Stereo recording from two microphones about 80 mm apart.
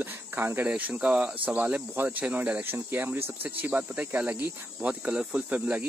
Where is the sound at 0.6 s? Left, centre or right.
Centre.